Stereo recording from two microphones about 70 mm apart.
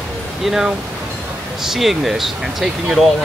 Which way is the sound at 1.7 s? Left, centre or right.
Centre.